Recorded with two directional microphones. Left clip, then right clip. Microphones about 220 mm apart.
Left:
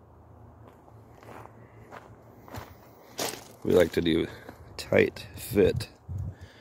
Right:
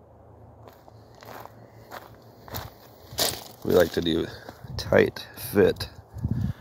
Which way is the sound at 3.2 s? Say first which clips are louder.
Right 6 dB; 35° right (ahead or behind).